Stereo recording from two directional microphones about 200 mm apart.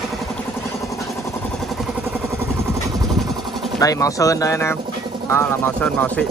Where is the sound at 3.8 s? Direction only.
15° left (ahead or behind).